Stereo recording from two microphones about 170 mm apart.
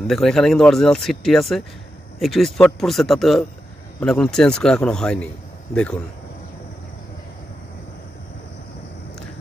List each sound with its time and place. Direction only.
0.1 s speech: centre (ahead or behind)